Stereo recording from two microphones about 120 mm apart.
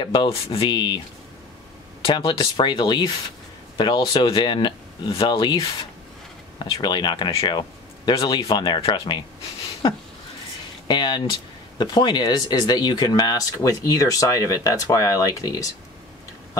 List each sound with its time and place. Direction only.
0.0 s speech: 40° left (ahead or behind)
6.6 s speech: 40° left (ahead or behind)
10.9 s speech: 40° left (ahead or behind)